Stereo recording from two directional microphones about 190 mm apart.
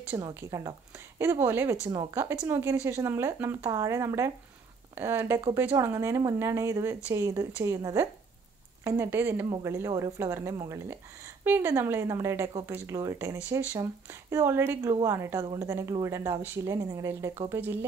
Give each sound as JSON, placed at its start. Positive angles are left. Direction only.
{"t": 0.1, "sound": "a woman's voice", "side_deg": -15}